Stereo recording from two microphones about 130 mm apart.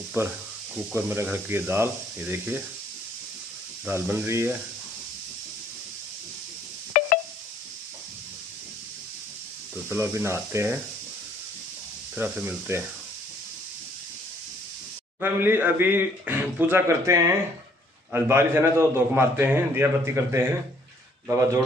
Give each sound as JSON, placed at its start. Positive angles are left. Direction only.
{"t": 0.2, "sound": "speech", "side_deg": -20}
{"t": 3.9, "sound": "speech", "side_deg": -20}
{"t": 6.9, "sound": "a sound", "side_deg": 75}
{"t": 9.8, "sound": "a man's voice", "side_deg": -20}
{"t": 12.2, "sound": "speech", "side_deg": -15}
{"t": 15.1, "sound": "a man's voice", "side_deg": -15}